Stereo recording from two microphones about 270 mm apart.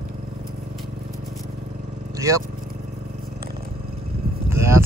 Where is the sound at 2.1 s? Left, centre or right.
Centre.